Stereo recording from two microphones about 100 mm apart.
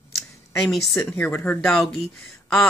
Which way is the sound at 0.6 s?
5° left (ahead or behind).